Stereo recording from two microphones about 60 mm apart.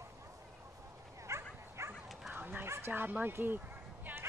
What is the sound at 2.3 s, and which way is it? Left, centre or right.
Dog, right.